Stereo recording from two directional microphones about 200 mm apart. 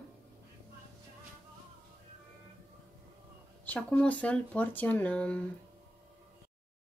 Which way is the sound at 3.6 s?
10° left (ahead or behind).